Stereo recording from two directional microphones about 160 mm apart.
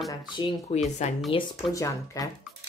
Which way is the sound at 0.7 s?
45° left (ahead or behind).